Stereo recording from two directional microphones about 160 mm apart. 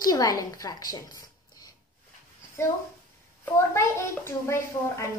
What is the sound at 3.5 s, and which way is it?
A child's voice, 15° left (ahead or behind).